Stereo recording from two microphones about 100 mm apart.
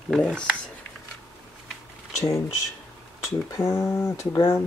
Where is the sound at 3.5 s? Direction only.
30° left (ahead or behind).